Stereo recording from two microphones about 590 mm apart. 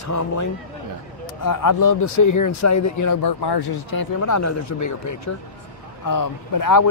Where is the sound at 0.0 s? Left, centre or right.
Left.